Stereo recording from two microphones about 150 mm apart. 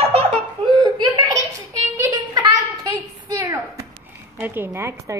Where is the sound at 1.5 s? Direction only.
20° right (ahead or behind).